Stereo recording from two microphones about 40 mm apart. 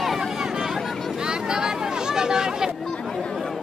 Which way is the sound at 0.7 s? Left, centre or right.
Centre.